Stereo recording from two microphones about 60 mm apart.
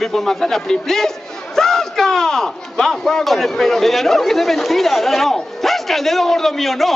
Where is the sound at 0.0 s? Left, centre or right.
Centre.